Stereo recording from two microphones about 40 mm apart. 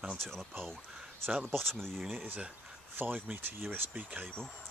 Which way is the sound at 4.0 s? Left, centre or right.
Right.